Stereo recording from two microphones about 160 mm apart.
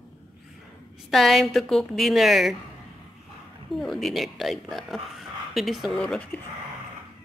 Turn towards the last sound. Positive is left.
turn(degrees=5)  # may be behind; listen again after turning